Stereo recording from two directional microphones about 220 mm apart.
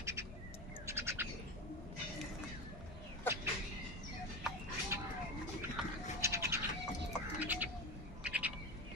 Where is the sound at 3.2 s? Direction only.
10° right (ahead or behind).